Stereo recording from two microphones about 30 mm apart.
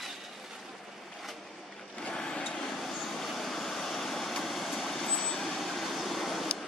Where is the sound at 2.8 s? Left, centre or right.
Centre.